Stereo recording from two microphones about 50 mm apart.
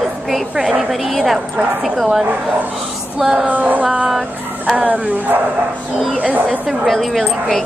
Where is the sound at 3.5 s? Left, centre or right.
Right.